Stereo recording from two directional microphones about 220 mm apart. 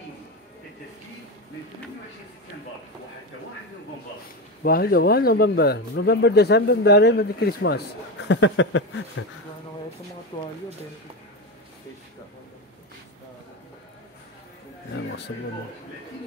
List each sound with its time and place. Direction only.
4.6 s speech: 45° left (ahead or behind)
8.3 s a sound: 55° left (ahead or behind)
10.3 s speech: 25° left (ahead or behind)